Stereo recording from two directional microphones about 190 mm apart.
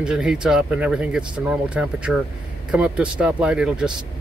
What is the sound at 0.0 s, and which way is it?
Speech, 5° right (ahead or behind).